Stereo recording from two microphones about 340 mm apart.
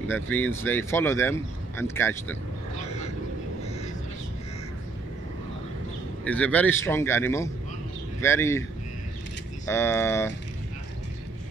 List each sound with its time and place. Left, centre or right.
0.1 s speech: centre
2.8 s vehicle: centre
6.2 s speech: centre
9.7 s speech: centre